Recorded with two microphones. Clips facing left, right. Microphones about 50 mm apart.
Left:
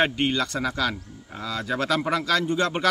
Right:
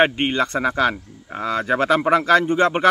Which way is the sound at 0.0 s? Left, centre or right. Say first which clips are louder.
Right 5 dB; right.